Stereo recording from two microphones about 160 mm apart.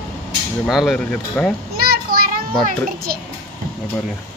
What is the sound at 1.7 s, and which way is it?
Children playing, 70° right (ahead or behind).